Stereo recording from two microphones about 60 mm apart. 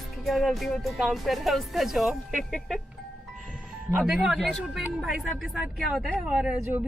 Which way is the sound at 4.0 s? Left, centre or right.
Centre.